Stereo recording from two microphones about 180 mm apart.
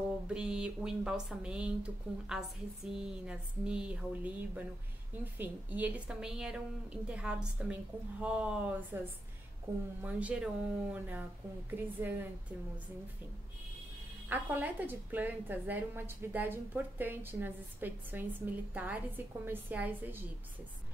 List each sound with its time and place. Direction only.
0.3 s a woman's voice: 5° right (ahead or behind)
10.0 s a woman's voice: 5° right (ahead or behind)
14.3 s a woman's voice: 10° right (ahead or behind)